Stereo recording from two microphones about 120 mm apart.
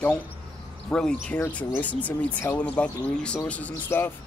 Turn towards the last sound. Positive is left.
turn(degrees=15)  # may be behind; listen again after turning